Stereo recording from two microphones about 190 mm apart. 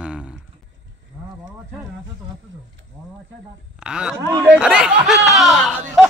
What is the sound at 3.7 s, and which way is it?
Speech, 5° right (ahead or behind).